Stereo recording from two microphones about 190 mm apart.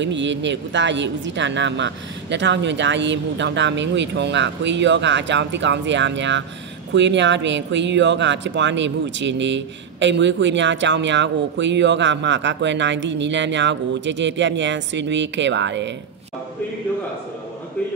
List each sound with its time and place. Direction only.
0.0 s speech: 70° right (ahead or behind)